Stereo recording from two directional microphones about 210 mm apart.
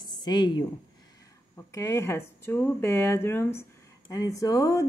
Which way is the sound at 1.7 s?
15° left (ahead or behind).